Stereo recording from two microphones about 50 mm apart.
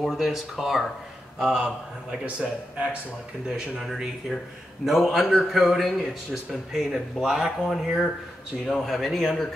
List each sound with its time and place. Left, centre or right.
0.0 s speech: centre
1.5 s speech: centre
3.4 s speech: centre
4.3 s speech: centre
8.6 s speech: centre